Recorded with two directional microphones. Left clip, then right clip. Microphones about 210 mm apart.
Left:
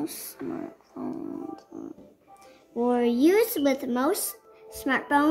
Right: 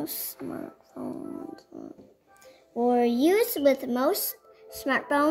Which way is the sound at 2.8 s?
25° right (ahead or behind).